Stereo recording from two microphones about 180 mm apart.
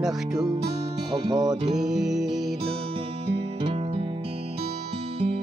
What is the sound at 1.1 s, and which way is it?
Music, 25° right (ahead or behind).